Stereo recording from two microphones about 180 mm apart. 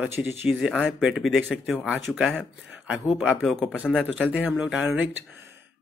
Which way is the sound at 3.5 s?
5° left (ahead or behind).